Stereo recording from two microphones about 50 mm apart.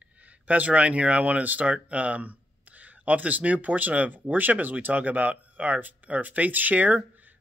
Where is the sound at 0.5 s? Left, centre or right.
Right.